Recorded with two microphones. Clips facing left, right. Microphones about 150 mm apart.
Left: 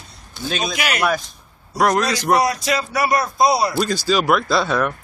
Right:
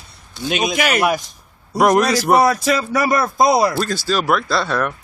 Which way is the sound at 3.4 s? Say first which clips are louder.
Right 2 dB; 50° right (ahead or behind).